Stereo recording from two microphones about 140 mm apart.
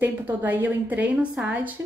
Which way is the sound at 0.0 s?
10° right (ahead or behind).